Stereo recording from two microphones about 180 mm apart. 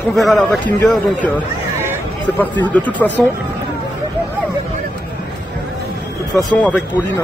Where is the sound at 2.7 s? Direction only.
10° left (ahead or behind).